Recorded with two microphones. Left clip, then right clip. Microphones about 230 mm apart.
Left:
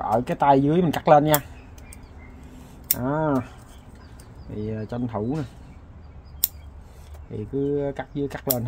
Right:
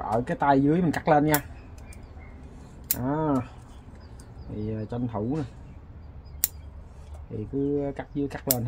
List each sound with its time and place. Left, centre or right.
0.0 s speech: left
3.0 s speech: left
4.6 s speech: left
7.7 s speech: left